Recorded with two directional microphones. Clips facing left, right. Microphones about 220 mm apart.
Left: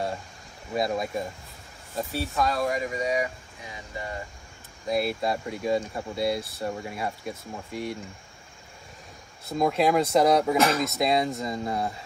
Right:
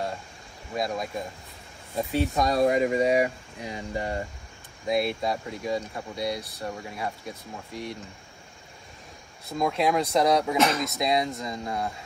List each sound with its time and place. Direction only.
0.7 s speech: centre (ahead or behind)
2.0 s speech: 20° right (ahead or behind); by 4.2 s 35° right (ahead or behind)
4.8 s speech: centre (ahead or behind)
9.5 s speech: centre (ahead or behind)